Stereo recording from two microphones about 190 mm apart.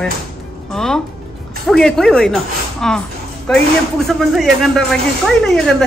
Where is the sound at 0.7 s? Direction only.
5° left (ahead or behind).